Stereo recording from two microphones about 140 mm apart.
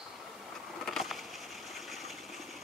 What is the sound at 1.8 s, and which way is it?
Engine, centre (ahead or behind).